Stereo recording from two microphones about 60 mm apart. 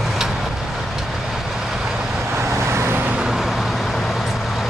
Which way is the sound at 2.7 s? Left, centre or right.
Right.